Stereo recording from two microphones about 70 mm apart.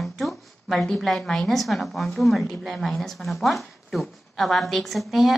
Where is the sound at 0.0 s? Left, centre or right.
Centre.